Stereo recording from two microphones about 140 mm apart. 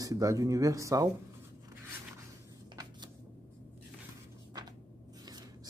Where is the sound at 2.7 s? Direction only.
30° right (ahead or behind).